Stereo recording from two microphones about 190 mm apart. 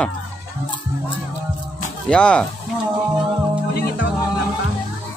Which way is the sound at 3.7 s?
55° left (ahead or behind).